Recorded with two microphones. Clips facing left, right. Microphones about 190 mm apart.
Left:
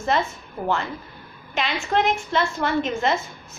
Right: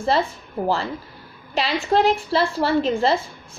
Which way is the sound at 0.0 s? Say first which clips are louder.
Right 2 dB; 30° right (ahead or behind).